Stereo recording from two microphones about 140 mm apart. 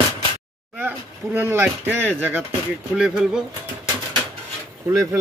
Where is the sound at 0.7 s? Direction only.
15° right (ahead or behind).